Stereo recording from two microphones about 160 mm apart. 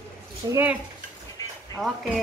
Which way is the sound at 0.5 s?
10° right (ahead or behind).